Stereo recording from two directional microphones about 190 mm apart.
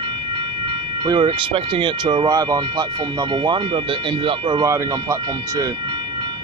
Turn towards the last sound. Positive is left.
turn(degrees=-15)  # may be behind; listen again after turning